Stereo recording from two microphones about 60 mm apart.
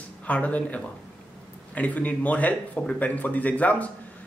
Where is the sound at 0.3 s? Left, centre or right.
Left.